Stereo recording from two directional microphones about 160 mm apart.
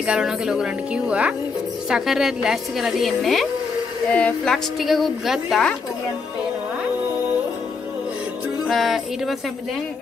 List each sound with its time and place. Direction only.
0.0 s a woman's voice: 5° right (ahead or behind)
8.6 s a woman's voice: centre (ahead or behind)